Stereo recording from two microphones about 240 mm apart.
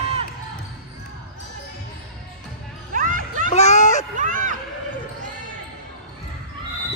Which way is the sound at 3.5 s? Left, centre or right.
Left.